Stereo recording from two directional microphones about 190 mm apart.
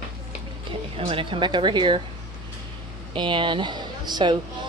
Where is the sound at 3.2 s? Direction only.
25° right (ahead or behind).